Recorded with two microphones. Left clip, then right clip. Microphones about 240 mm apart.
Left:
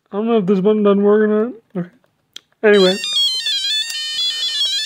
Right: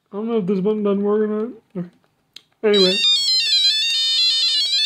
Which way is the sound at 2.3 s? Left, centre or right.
Left.